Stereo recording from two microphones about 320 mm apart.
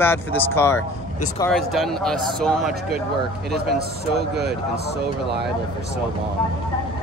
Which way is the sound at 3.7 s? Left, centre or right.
Right.